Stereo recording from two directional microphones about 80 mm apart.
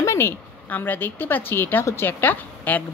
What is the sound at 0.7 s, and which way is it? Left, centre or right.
Speech, left.